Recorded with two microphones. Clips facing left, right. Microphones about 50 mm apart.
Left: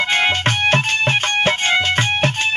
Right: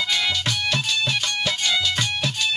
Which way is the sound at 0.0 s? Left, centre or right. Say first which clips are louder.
Left 7 dB; left.